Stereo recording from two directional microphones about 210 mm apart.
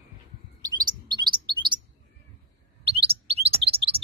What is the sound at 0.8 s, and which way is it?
Chirp, 20° right (ahead or behind).